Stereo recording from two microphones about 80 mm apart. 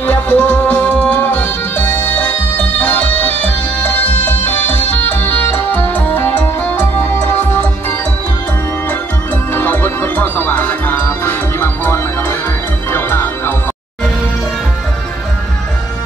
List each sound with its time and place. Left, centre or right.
0.0 s music: centre
9.5 s music: left